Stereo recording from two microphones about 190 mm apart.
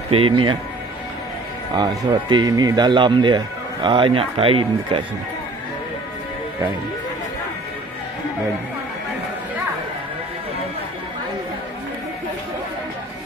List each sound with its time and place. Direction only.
0.1 s speech: 30° right (ahead or behind)
1.7 s speech: 20° right (ahead or behind)